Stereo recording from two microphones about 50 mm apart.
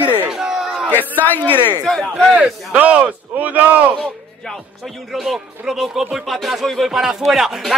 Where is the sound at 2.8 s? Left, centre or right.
Right.